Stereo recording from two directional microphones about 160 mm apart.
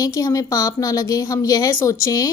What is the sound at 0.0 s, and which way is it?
A woman's voice, 20° left (ahead or behind).